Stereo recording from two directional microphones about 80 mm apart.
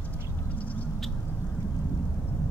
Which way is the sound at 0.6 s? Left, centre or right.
Centre.